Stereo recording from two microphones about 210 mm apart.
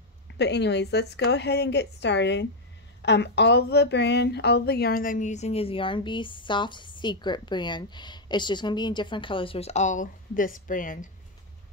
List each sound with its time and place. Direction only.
0.3 s a woman's voice: 55° left (ahead or behind)